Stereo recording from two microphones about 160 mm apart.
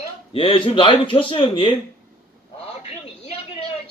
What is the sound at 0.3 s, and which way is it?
Speech, 30° left (ahead or behind).